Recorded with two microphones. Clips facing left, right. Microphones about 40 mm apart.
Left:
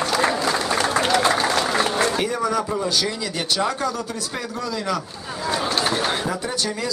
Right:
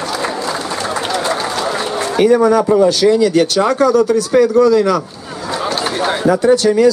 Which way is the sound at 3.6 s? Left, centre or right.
Right.